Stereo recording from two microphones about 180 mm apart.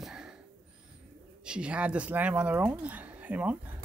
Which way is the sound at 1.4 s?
5° right (ahead or behind).